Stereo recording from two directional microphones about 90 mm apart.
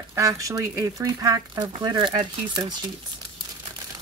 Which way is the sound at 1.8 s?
55° right (ahead or behind).